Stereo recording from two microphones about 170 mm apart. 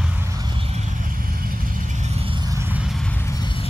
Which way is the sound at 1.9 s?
40° right (ahead or behind).